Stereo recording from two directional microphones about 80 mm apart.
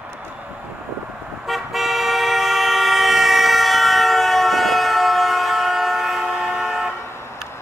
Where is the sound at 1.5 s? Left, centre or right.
Centre.